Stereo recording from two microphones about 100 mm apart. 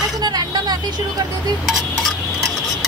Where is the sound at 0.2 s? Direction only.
40° right (ahead or behind).